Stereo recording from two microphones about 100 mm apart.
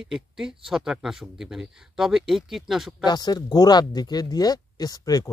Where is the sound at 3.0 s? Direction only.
45° left (ahead or behind).